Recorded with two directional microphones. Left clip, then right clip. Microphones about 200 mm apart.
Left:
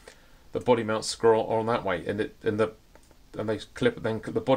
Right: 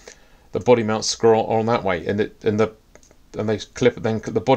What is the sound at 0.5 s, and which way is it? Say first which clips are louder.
Speech: right 7 dB; 40° right (ahead or behind).